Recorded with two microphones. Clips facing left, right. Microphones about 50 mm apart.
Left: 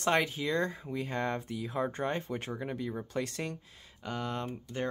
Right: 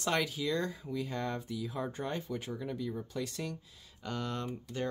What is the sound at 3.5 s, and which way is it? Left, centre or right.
Speech, centre.